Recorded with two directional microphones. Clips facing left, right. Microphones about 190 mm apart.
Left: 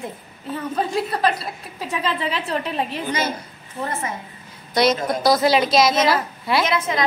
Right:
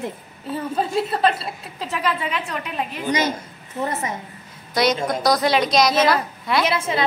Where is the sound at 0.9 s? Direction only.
Centre (ahead or behind).